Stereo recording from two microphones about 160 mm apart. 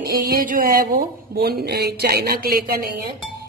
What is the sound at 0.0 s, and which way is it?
Speech, 65° right (ahead or behind).